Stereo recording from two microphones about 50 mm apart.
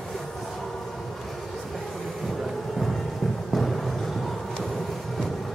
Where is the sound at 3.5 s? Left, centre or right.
Centre.